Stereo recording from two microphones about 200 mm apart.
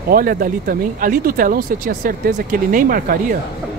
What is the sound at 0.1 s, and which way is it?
Speech, 45° right (ahead or behind).